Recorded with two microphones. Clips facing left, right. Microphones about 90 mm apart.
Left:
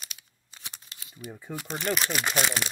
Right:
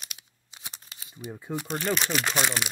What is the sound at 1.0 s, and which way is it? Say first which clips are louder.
Crumpling: right 3 dB; 20° right (ahead or behind).